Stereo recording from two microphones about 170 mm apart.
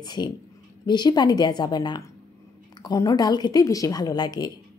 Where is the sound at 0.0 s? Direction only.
25° left (ahead or behind).